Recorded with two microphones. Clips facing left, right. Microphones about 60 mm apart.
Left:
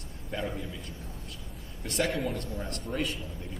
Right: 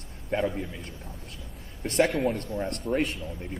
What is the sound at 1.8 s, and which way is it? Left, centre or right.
Speech, right.